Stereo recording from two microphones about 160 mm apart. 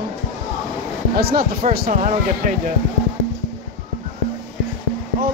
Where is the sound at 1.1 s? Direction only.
70° right (ahead or behind).